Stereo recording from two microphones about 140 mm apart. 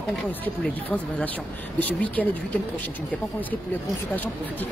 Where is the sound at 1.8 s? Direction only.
10° left (ahead or behind).